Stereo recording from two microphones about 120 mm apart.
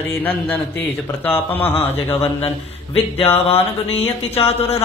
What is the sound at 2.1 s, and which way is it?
Speech, 55° left (ahead or behind).